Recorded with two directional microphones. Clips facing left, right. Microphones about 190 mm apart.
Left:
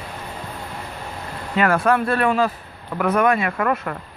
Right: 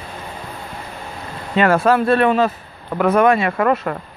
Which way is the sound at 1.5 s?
25° right (ahead or behind).